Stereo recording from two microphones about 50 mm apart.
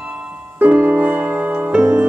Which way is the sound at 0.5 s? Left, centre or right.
Right.